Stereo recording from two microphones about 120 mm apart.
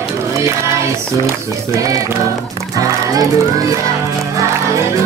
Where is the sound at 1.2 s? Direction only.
20° right (ahead or behind).